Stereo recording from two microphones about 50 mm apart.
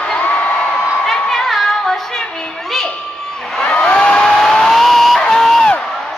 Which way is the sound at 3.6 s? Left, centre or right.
Left.